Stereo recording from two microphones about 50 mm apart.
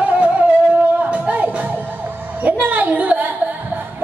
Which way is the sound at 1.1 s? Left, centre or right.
Right.